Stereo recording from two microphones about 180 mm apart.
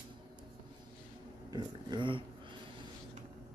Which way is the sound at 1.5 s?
25° right (ahead or behind).